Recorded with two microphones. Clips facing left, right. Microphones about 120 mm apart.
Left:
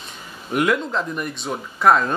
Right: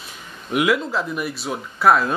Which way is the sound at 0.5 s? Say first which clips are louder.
Right 1 dB; 5° right (ahead or behind).